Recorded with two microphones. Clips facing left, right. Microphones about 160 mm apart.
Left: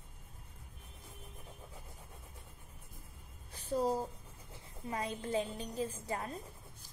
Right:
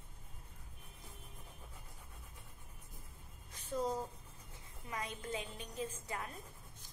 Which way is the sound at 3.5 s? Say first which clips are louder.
Left 5 dB; 35° left (ahead or behind).